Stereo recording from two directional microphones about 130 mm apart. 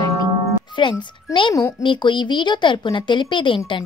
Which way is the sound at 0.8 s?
40° left (ahead or behind).